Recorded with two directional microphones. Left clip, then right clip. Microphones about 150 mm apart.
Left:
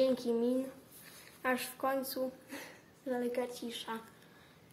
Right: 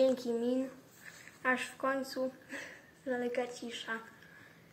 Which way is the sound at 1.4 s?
45° left (ahead or behind).